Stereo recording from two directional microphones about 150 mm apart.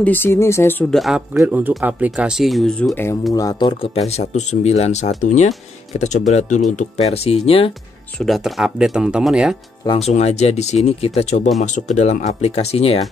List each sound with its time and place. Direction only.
0.0 s speech: 15° left (ahead or behind)
0.9 s speech: centre (ahead or behind)
1.4 s speech: 10° right (ahead or behind)
2.9 s speech: 15° left (ahead or behind); by 7.7 s 40° left (ahead or behind)
8.2 s speech: centre (ahead or behind)
9.9 s speech: 45° left (ahead or behind)